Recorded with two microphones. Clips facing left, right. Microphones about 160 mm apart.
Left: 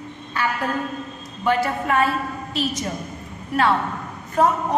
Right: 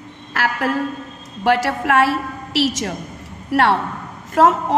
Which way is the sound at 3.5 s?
75° right (ahead or behind).